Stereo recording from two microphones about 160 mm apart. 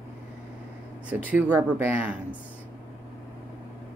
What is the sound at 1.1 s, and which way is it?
Speech, 10° right (ahead or behind).